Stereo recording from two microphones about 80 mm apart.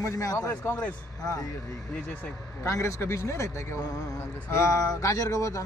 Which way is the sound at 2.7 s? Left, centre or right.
Left.